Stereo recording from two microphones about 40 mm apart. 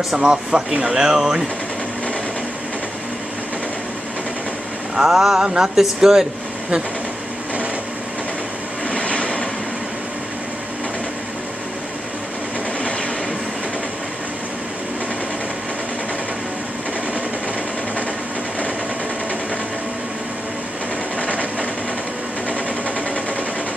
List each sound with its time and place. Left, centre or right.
0.1 s speech: centre
4.9 s speech: centre
8.8 s vehicle: left